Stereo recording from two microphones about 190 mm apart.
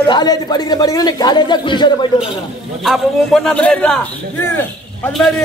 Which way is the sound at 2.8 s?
Centre (ahead or behind).